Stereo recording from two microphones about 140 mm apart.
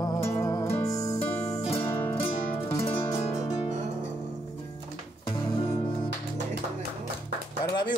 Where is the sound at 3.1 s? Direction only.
20° left (ahead or behind).